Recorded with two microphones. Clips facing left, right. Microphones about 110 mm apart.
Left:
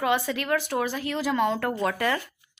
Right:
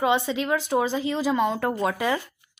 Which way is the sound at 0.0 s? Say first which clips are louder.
Right 2 dB; 20° right (ahead or behind).